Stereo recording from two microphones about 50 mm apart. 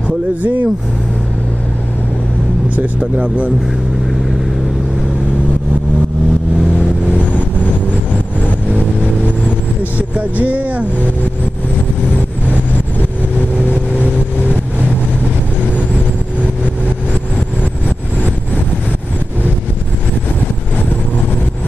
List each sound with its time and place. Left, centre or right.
0.4 s speech: right
2.7 s speech: right
8.6 s vehicle: right
10.1 s speech: right
14.4 s vehicle: right